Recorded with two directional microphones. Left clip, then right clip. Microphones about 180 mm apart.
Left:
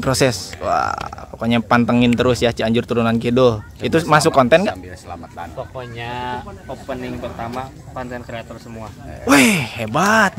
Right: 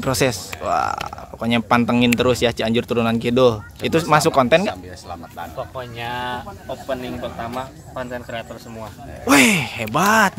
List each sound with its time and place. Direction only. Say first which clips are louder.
0.0 s speech: left 3 dB; 5° left (ahead or behind)
5.6 s speech: right 1 dB; 20° right (ahead or behind)
9.2 s speech: left 1 dB; centre (ahead or behind)